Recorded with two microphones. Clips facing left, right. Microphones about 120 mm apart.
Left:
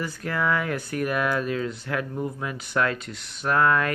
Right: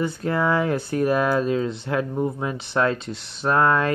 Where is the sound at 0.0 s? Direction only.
25° right (ahead or behind).